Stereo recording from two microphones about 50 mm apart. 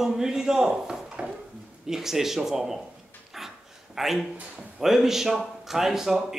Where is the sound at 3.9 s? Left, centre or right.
Centre.